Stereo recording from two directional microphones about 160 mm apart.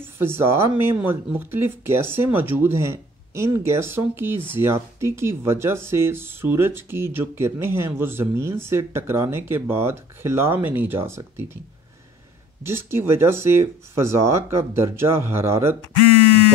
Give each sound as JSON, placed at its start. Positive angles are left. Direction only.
{"t": 0.2, "sound": "speech", "side_deg": -15}
{"t": 12.6, "sound": "speech", "side_deg": -15}